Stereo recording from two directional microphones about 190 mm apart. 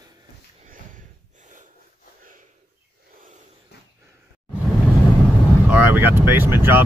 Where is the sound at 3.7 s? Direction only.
60° left (ahead or behind).